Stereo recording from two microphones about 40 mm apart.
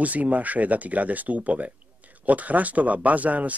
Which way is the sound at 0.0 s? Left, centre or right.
Right.